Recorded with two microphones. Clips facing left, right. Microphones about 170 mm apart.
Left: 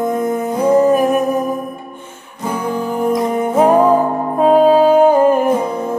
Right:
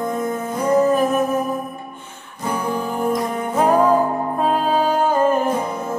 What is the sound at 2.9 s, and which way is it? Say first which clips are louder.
Music: left 7 dB; 10° left (ahead or behind).